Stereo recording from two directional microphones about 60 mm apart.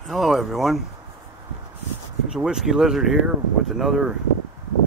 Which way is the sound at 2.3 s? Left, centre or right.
Centre.